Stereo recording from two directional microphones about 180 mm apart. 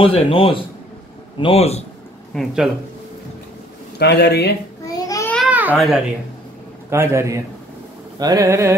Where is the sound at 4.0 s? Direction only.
65° left (ahead or behind).